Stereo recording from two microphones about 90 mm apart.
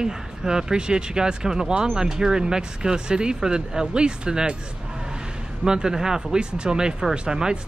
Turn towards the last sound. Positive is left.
turn(degrees=-10)  # may be behind; listen again after turning